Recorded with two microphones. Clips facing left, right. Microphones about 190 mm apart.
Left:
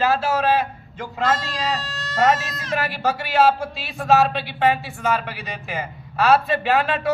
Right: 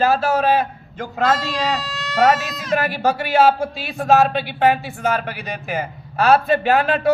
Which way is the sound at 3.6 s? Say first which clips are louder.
Right 5 dB; 40° right (ahead or behind).